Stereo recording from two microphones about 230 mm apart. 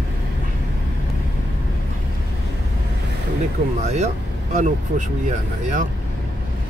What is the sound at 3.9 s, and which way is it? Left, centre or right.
Speech, right.